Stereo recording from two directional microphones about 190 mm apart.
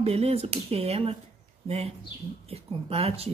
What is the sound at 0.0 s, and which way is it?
Speech, 30° right (ahead or behind).